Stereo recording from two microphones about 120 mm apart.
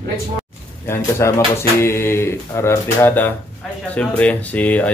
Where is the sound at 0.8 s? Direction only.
20° left (ahead or behind).